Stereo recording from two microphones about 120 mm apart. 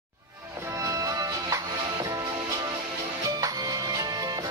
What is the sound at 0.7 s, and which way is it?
Music, 25° right (ahead or behind).